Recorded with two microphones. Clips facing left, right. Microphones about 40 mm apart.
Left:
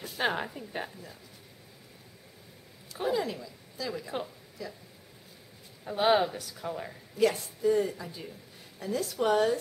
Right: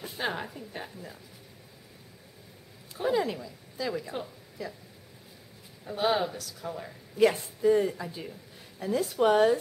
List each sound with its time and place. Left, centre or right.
0.2 s a woman's voice: centre
3.1 s speech: centre
5.9 s speech: centre
7.2 s speech: right